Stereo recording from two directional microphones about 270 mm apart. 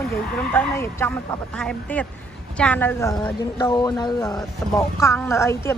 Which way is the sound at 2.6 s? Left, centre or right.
Centre.